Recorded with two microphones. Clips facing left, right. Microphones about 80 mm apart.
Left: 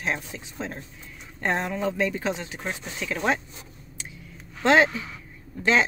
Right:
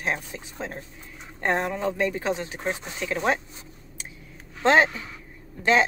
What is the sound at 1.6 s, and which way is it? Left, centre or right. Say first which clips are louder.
A woman's voice: even; right.